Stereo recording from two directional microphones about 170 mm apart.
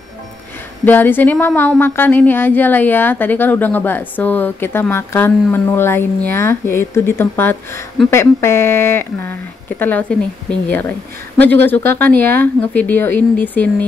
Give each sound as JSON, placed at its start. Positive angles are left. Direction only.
{"t": 0.8, "sound": "a woman's voice", "side_deg": 10}